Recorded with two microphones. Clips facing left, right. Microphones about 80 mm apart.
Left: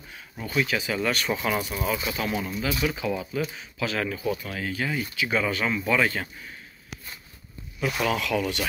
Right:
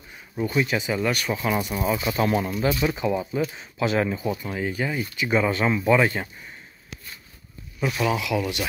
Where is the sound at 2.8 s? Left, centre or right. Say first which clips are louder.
Right 3 dB; right.